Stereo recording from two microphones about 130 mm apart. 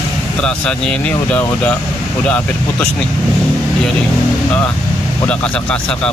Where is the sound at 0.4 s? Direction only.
5° left (ahead or behind).